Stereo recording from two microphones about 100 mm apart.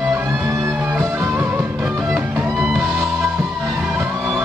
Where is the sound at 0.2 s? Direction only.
25° right (ahead or behind).